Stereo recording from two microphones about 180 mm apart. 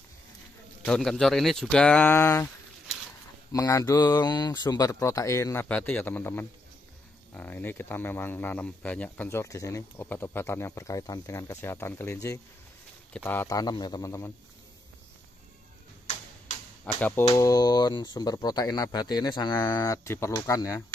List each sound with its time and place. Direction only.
0.8 s speech: 5° left (ahead or behind)
3.5 s speech: 15° left (ahead or behind)
16.8 s speech: 5° left (ahead or behind)
17.3 s speech: 20° left (ahead or behind)